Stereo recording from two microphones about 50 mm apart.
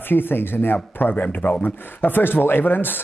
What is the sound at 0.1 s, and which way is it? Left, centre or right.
A man's voice, left.